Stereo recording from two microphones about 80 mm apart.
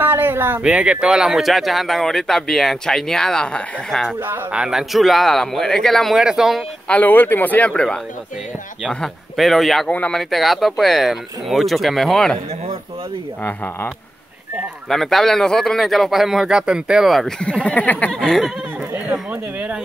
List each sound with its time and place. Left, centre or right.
0.0 s a sound: right
0.6 s speech: centre
4.5 s speech: centre
6.1 s speech: centre
6.9 s speech: left
9.0 s speech: centre
9.8 s speech: centre
10.3 s speech: centre
13.4 s speech: left
14.9 s speech: centre
17.4 s speech: centre
18.1 s speech: centre